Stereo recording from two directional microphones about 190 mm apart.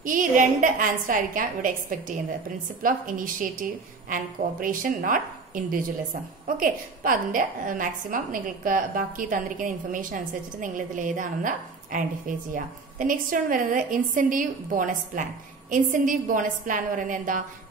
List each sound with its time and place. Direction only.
0.0 s a woman's voice: 45° right (ahead or behind)